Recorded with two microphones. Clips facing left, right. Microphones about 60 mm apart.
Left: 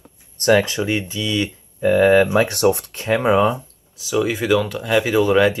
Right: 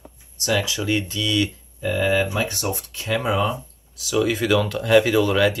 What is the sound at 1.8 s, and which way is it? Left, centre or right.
Speech, left.